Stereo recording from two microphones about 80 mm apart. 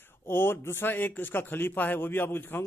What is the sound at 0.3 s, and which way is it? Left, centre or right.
A man's voice, left.